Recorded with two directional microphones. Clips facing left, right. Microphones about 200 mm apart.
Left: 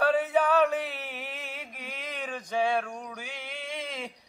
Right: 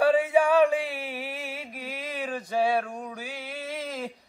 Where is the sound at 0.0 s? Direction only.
10° right (ahead or behind).